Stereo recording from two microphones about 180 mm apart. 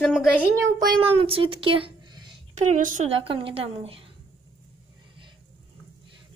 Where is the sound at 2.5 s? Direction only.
45° right (ahead or behind).